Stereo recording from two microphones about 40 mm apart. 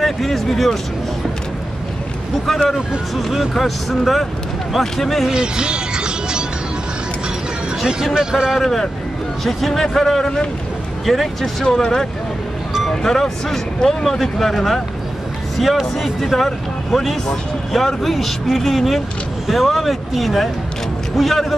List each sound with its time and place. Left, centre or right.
0.0 s speech: centre
3.2 s speech: centre
5.3 s music: right
7.8 s speech: centre
9.4 s speech: centre
11.1 s speech: centre
11.6 s speech: centre